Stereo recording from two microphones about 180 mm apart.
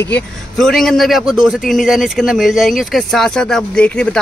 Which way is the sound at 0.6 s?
Centre (ahead or behind).